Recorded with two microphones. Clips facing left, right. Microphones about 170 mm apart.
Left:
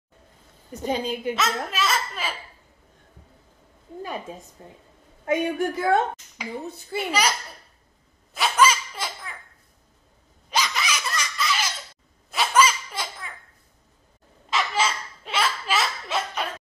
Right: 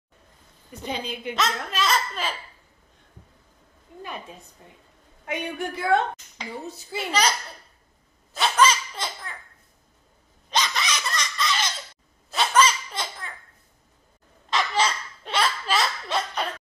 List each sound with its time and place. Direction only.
0.8 s a woman's voice: 45° left (ahead or behind)
1.7 s a child's voice: 5° left (ahead or behind)
4.0 s a woman's voice: 45° left (ahead or behind)
6.6 s a child's voice: 55° left (ahead or behind)
7.1 s a child's voice: 10° left (ahead or behind)
8.4 s laughter: 10° left (ahead or behind)
10.5 s laughter: 10° left (ahead or behind)
14.5 s a sound: 5° left (ahead or behind)